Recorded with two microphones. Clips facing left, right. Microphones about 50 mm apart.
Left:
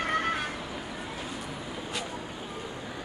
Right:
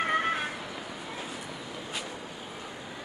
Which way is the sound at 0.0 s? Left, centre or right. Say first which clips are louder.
Right 1 dB; centre.